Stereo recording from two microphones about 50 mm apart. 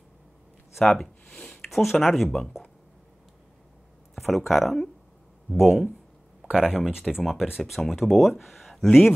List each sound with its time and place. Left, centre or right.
0.7 s speech: centre
1.3 s a sound: centre
1.7 s speech: centre
4.1 s speech: centre
6.4 s speech: centre